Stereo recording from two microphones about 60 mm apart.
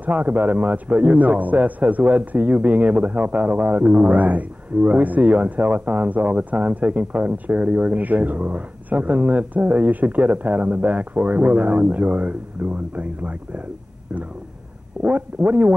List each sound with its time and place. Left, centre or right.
0.0 s a man's voice: right
15.0 s a man's voice: right